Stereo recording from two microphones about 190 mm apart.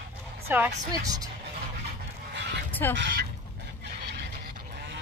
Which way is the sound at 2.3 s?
65° right (ahead or behind).